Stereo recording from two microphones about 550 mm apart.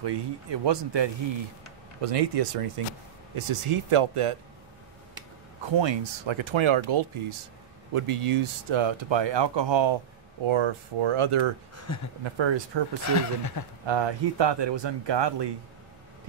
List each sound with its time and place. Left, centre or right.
0.0 s speech: right
2.0 s speech: right
3.3 s speech: right
5.8 s speech: right
11.9 s speech: left
12.4 s speech: right
13.0 s speech: left
13.8 s speech: right